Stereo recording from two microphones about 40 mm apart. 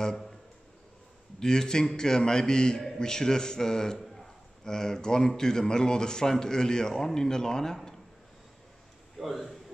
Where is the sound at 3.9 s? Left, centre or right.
Centre.